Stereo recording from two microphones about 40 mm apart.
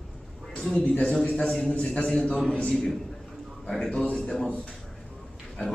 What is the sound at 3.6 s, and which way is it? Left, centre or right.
Speech, centre.